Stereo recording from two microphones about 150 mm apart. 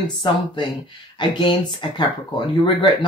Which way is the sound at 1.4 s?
35° left (ahead or behind).